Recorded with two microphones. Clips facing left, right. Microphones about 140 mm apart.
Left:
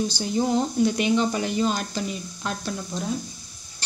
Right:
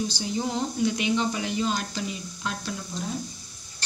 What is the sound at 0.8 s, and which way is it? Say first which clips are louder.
A woman's voice: left 3 dB; 45° left (ahead or behind).